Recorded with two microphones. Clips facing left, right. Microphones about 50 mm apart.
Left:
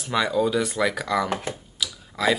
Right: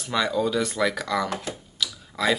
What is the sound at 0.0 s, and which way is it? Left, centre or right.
Speech, centre.